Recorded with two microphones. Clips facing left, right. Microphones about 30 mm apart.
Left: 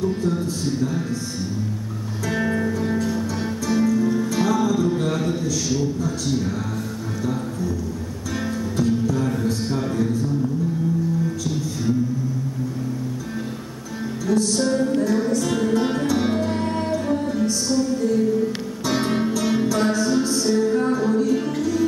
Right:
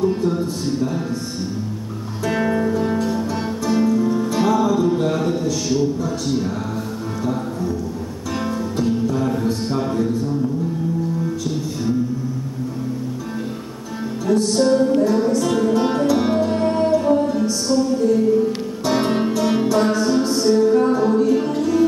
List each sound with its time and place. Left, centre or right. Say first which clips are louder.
0.0 s a sound: right 4 dB; right
2.2 s music: right 3 dB; centre
4.0 s music: right 2 dB; centre
5.0 s a sound: right 3 dB; centre
5.4 s speech: right 3 dB; right
8.7 s music: even; right
9.2 s mantra: right 3 dB; centre
9.5 s a sound: right 2 dB; centre
14.2 s music: right 4 dB; right